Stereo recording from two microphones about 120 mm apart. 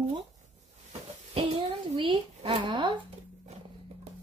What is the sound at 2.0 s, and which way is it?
Speech, 45° right (ahead or behind).